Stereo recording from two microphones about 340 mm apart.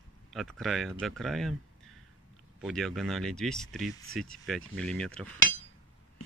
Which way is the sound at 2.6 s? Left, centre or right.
Centre.